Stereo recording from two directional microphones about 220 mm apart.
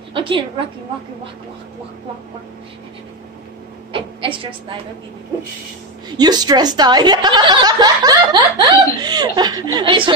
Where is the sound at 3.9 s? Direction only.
25° right (ahead or behind).